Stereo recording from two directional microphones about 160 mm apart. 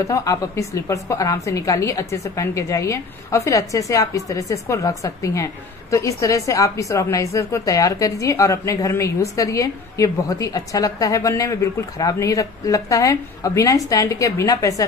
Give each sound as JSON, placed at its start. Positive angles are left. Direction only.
{"t": 0.0, "sound": "a woman's voice", "side_deg": 20}